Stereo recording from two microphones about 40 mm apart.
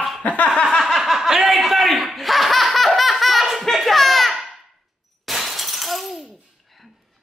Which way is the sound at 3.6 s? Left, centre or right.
Centre.